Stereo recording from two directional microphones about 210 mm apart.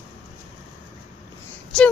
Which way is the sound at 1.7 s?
5° left (ahead or behind).